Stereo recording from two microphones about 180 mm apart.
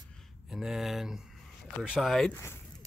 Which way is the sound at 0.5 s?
Centre (ahead or behind).